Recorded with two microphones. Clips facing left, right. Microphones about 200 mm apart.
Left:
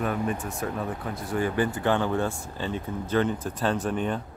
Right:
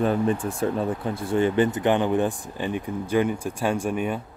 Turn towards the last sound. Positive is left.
turn(degrees=-10)  # may be behind; listen again after turning